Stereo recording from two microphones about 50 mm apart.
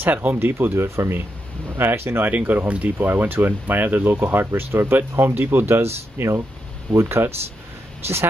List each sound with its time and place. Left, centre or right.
0.0 s speech: right
1.8 s speech: right
2.3 s speech: right
3.1 s speech: right